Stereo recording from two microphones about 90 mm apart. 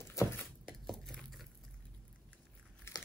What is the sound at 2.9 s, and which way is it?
Crumpling, 30° left (ahead or behind).